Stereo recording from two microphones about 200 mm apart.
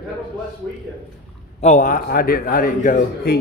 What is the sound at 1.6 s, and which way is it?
A man's voice, 40° left (ahead or behind).